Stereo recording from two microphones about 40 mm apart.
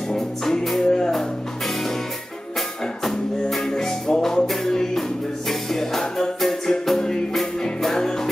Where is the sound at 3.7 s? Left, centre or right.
Centre.